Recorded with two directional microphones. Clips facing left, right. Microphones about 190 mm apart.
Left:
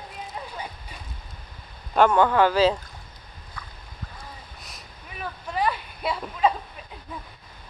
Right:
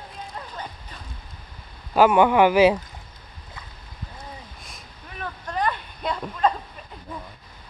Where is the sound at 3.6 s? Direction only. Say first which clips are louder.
Left 2 dB; 20° right (ahead or behind).